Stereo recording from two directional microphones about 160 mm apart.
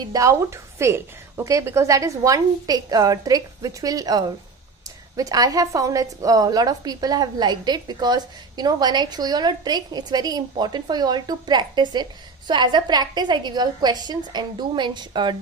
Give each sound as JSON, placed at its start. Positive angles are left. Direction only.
{"t": 0.0, "sound": "a woman's voice", "side_deg": -20}